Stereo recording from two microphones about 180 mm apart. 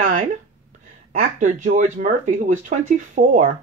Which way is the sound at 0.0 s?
45° right (ahead or behind).